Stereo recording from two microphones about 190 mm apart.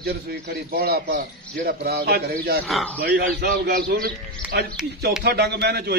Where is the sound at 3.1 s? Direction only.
55° right (ahead or behind).